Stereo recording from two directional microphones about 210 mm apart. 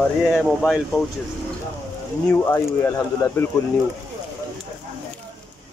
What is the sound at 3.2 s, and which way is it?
Speech, 20° left (ahead or behind).